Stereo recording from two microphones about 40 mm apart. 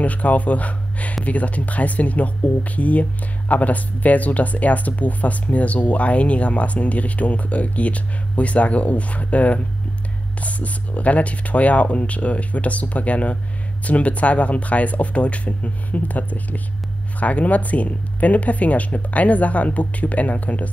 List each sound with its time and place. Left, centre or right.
0.0 s speech: left